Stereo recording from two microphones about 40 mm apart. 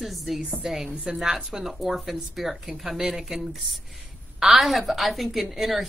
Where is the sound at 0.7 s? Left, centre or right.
Centre.